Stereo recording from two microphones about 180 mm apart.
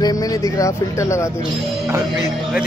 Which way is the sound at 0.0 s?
20° left (ahead or behind).